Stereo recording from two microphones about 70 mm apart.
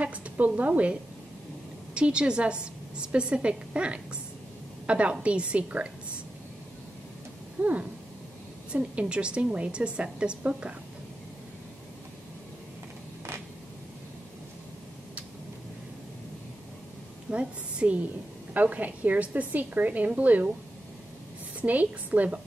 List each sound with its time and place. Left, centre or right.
0.0 s a woman's voice: centre
2.0 s a woman's voice: centre
7.6 s a woman's voice: right
17.3 s a woman's voice: centre
21.5 s a woman's voice: right